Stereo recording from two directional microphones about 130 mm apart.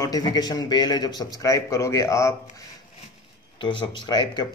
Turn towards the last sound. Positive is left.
turn(degrees=35)  # may be behind; listen again after turning